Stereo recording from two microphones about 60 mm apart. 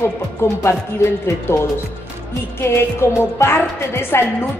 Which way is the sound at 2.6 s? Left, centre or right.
Left.